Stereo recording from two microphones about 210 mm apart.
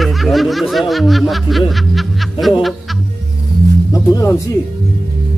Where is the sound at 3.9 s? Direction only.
15° left (ahead or behind).